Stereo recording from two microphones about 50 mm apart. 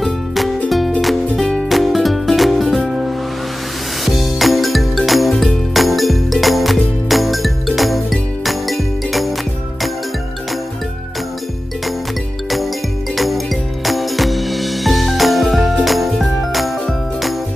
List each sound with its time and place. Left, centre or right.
0.7 s music: centre
1.4 s music: centre
1.7 s music: centre
4.0 s music: centre
13.1 s music: centre